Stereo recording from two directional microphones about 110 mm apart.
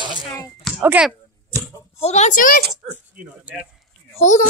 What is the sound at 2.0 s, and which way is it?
Speech, 90° left.